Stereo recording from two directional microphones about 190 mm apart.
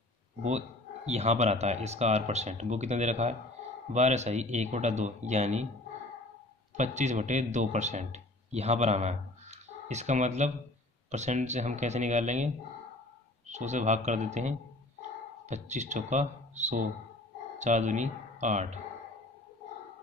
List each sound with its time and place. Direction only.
0.4 s speech: 35° right (ahead or behind)
6.8 s a man's voice: 40° right (ahead or behind)
13.5 s speech: 40° right (ahead or behind)